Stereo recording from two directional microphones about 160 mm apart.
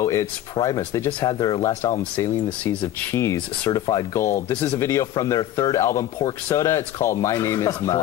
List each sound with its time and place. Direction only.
0.0 s speech: 20° left (ahead or behind)